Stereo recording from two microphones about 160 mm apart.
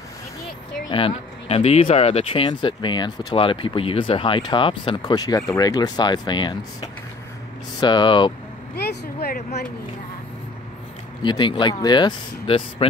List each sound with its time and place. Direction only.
0.8 s speech: 35° left (ahead or behind)
8.7 s speech: 75° left (ahead or behind)
11.2 s speech: 30° left (ahead or behind)